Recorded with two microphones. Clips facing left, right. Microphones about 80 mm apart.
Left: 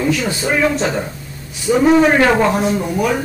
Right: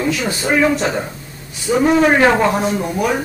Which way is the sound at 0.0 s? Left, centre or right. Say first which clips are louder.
Left 1 dB; centre.